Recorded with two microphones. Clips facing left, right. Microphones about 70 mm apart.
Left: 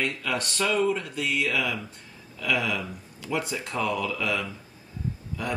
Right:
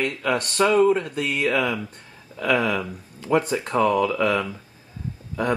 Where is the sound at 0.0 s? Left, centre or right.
Right.